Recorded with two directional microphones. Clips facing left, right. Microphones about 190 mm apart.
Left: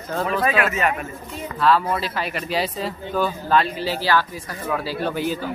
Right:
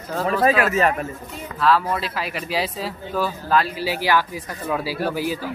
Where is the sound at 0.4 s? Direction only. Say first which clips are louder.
Right 5 dB; 35° right (ahead or behind).